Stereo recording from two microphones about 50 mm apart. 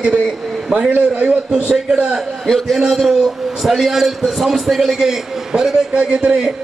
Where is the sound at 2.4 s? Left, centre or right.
Centre.